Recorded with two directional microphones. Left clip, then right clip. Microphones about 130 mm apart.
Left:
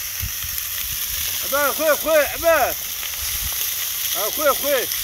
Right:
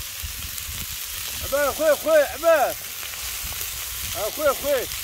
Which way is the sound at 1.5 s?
65° left (ahead or behind).